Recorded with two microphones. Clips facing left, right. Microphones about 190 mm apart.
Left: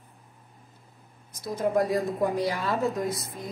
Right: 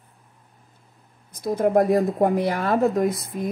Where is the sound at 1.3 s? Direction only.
60° right (ahead or behind).